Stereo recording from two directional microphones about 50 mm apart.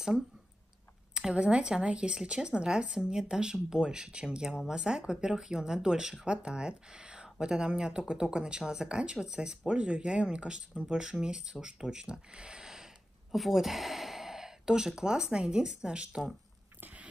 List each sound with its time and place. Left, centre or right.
1.1 s speech: centre